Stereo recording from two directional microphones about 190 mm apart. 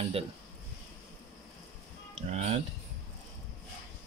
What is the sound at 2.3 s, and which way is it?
Speech, 35° right (ahead or behind).